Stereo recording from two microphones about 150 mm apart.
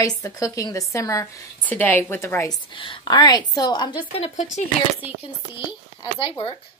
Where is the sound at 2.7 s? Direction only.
35° left (ahead or behind).